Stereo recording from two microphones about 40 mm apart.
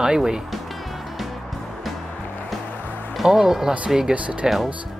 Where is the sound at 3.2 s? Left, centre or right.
Centre.